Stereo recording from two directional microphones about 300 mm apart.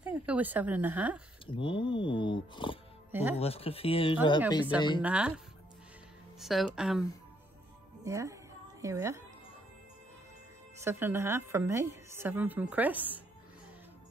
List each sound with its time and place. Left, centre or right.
0.0 s speech: centre
1.4 s speech: centre
3.1 s speech: centre
3.3 s speech: centre
5.0 s speech: centre
6.4 s a woman's voice: centre
10.8 s a woman's voice: centre